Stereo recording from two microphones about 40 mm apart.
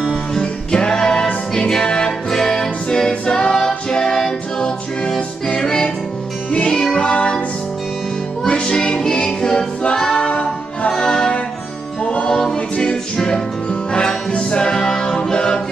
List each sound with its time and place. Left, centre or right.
0.3 s music: centre
7.0 s music: left
8.5 s music: left
10.9 s music: centre